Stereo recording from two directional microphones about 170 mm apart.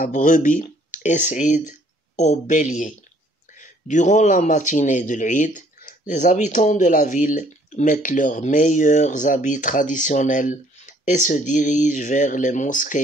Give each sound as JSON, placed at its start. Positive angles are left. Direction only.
{"t": 0.0, "sound": "a man's voice", "side_deg": 50}